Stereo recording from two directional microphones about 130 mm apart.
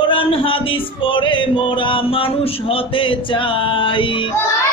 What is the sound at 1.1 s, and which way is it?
Speech, 40° left (ahead or behind).